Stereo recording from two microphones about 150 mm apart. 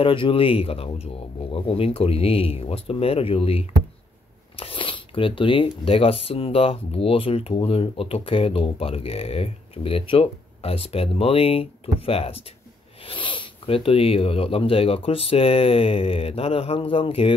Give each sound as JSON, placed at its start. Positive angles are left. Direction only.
{"t": 0.0, "sound": "speech", "side_deg": 35}